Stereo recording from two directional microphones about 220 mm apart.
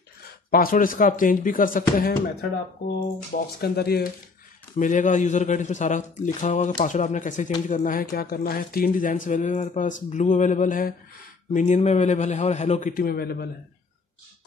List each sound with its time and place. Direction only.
0.5 s speech: 40° left (ahead or behind)
3.3 s speech: 40° left (ahead or behind)
4.7 s speech: 35° left (ahead or behind)